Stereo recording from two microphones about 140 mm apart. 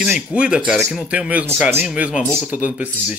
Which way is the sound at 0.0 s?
5° right (ahead or behind).